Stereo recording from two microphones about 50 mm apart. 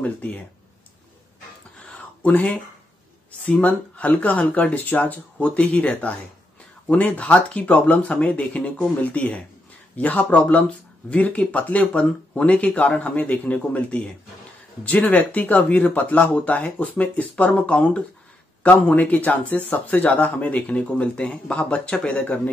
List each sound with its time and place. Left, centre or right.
0.0 s speech: left
1.9 s a sound: left
3.4 s speech: left